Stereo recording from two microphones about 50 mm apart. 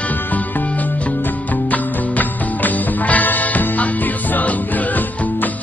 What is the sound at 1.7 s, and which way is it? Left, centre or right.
Music, left.